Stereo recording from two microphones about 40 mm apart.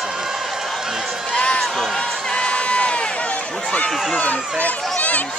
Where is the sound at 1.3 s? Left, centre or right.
Left.